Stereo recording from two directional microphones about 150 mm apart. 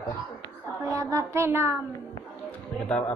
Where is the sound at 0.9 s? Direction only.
20° right (ahead or behind).